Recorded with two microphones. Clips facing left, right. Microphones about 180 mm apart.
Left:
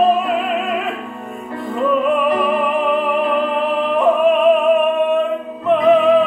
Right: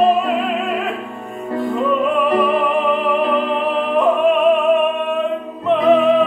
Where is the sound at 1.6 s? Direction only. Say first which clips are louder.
Left 1 dB; centre (ahead or behind).